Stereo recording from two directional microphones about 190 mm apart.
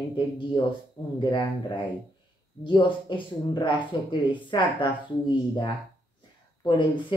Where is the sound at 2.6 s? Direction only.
25° left (ahead or behind).